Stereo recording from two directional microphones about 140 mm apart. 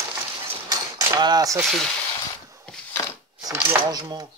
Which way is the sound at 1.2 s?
30° right (ahead or behind).